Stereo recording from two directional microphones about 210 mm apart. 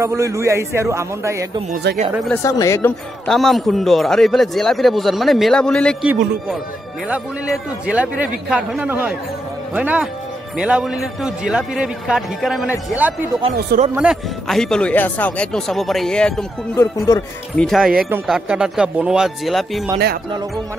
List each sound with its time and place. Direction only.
0.0 s a man's voice: 15° right (ahead or behind)
1.7 s speech: 50° right (ahead or behind)
2.2 s speech: 10° left (ahead or behind)
3.3 s speech: centre (ahead or behind)
7.1 s a man's voice: 5° right (ahead or behind); by 17.2 s 15° left (ahead or behind)
17.6 s speech: centre (ahead or behind)